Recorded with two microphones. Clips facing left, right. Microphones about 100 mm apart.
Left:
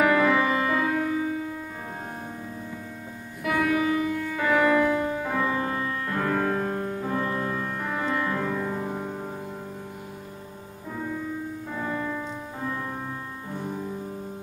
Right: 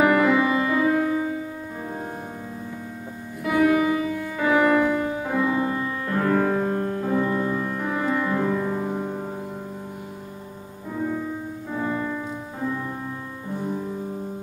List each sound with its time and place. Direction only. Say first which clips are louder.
0.0 s music: right 2 dB; 10° right (ahead or behind)
3.4 s music: right 4 dB; 15° right (ahead or behind)
11.7 s music: right 4 dB; 10° right (ahead or behind)